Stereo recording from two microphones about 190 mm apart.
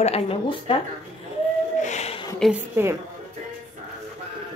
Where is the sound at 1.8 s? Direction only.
35° left (ahead or behind).